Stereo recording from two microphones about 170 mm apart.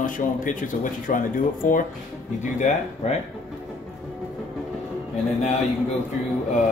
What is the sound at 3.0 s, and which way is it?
Speech, 40° left (ahead or behind).